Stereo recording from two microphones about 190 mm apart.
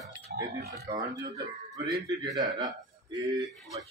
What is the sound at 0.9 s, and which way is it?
Speech, 20° right (ahead or behind).